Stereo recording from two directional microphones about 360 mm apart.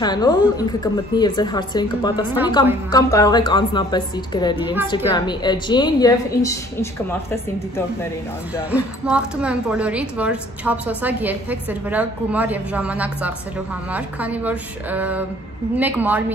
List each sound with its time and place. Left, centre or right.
0.0 s a woman's voice: centre